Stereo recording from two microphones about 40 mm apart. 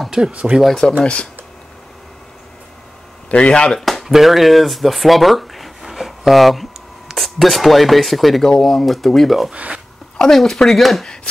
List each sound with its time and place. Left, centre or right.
0.2 s speech: right
0.7 s speech: centre
1.0 s speech: left
3.3 s speech: left
3.8 s speech: centre